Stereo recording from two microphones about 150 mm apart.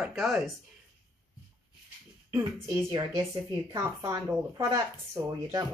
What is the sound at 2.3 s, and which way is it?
Speech, 20° right (ahead or behind).